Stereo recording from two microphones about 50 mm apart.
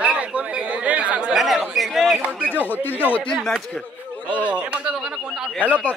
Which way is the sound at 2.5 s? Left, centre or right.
Left.